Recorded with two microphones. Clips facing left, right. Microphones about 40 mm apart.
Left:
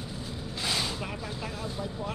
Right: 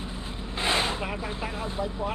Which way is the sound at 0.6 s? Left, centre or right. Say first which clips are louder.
Right 6 dB; right.